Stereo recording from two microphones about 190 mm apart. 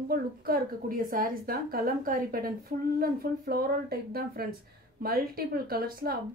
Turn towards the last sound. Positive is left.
turn(degrees=-50)  # may be behind; listen again after turning